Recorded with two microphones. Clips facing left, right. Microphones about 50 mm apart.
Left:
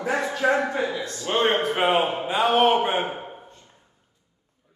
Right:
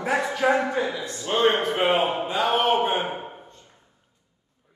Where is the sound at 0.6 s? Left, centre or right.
Left.